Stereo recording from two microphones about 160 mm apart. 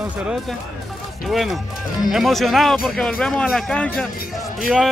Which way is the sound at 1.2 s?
Centre (ahead or behind).